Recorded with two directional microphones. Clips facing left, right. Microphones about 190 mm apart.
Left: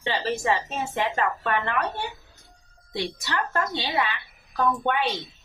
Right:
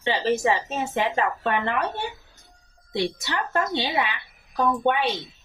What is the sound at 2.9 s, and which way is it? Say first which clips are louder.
A woman's voice: right 3 dB; 25° right (ahead or behind).